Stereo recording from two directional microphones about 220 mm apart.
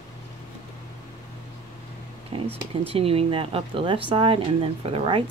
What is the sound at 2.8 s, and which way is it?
Speech, 25° right (ahead or behind).